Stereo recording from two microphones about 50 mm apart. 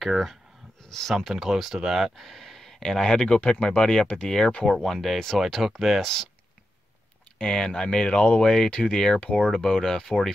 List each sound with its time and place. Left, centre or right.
0.0 s speech: centre
0.8 s speech: centre
1.3 s speech: centre
4.6 s speech: centre
7.3 s speech: centre